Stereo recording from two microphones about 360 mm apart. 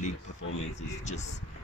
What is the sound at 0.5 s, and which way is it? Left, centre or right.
Speech, centre.